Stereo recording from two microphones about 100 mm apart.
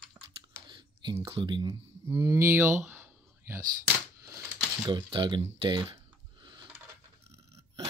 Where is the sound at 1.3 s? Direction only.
50° right (ahead or behind).